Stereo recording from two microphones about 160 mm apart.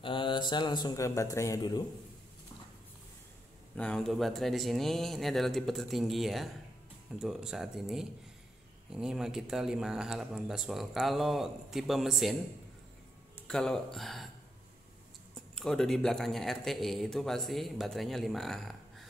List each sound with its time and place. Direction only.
0.0 s speech: 30° left (ahead or behind)
3.7 s speech: 5° left (ahead or behind)
13.5 s speech: 5° left (ahead or behind)
15.3 s speech: 5° left (ahead or behind)